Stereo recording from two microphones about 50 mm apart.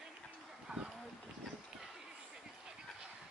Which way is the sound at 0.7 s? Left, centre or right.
Right.